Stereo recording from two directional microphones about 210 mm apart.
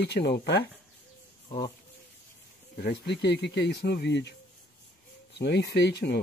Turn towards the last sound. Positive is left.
turn(degrees=50)  # may be behind; listen again after turning